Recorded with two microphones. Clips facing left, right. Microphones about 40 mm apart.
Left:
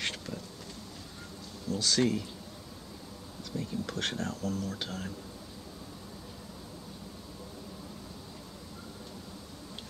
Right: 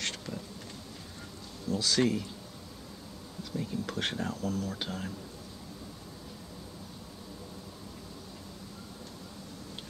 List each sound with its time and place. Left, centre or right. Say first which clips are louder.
0.0 s insect: left 1 dB; centre
1.7 s speech: even; centre
3.5 s a sound: right 1 dB; centre